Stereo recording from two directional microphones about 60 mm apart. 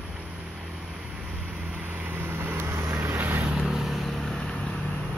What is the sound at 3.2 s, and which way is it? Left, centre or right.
Vehicle, right.